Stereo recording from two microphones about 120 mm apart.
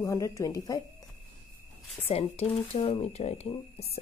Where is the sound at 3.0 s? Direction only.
70° left (ahead or behind).